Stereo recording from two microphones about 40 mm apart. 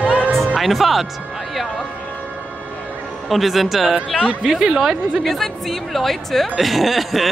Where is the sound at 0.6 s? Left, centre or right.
Centre.